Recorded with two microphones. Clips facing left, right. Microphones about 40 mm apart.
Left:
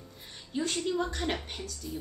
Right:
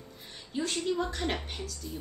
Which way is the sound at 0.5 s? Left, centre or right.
Centre.